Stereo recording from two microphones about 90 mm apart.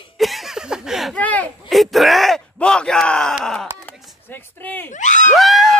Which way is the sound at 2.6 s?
10° left (ahead or behind).